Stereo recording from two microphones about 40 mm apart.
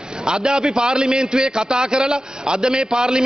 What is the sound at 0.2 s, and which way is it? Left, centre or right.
A man's voice, centre.